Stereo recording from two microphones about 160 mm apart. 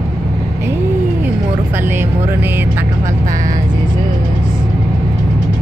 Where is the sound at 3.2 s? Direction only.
50° right (ahead or behind).